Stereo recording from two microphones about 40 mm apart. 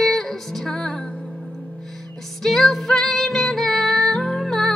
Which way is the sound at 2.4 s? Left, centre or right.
Centre.